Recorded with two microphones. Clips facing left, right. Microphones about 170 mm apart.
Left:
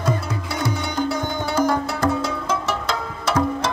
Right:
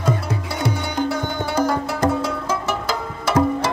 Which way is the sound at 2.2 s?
5° right (ahead or behind).